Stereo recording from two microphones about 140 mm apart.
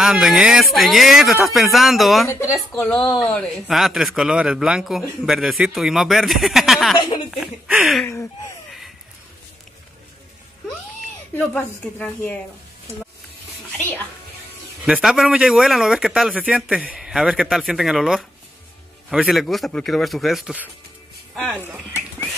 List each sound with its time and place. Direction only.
0.0 s speech: 5° right (ahead or behind)
2.3 s a woman's voice: 20° left (ahead or behind)
2.8 s speech: 5° left (ahead or behind)
11.3 s a woman's voice: 10° left (ahead or behind)
14.9 s speech: 5° right (ahead or behind)